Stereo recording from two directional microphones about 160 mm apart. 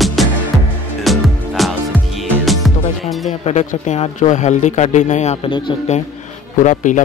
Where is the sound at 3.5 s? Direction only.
45° left (ahead or behind).